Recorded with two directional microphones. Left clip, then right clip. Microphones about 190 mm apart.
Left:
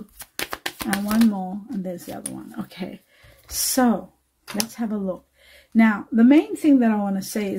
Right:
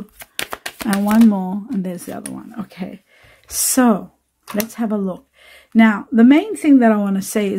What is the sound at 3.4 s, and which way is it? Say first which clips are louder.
Speech: right 5 dB; 35° right (ahead or behind).